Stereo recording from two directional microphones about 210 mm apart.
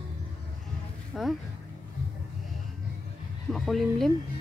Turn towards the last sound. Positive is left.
turn(degrees=0)  # may be behind; listen again after turning